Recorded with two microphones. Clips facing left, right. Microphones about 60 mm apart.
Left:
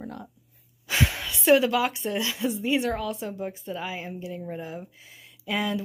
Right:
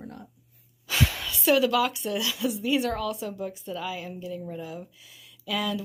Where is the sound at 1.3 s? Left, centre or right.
Left.